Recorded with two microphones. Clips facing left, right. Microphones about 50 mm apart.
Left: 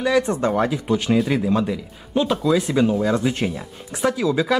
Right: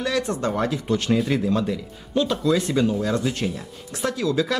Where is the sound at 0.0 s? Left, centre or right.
Centre.